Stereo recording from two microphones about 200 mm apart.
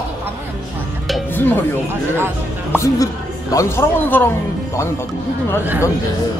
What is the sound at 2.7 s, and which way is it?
A man's voice, 15° left (ahead or behind).